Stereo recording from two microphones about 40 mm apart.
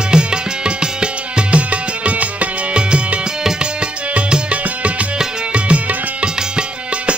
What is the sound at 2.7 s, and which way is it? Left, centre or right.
Music, right.